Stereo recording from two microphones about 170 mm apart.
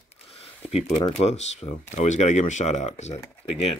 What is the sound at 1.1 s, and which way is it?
Speech, 40° left (ahead or behind).